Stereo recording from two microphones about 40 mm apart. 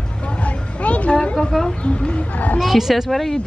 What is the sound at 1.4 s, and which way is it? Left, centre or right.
Speech, centre.